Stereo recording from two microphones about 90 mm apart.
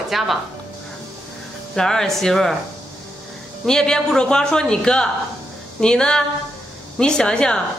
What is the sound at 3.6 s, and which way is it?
A woman's voice, 10° left (ahead or behind).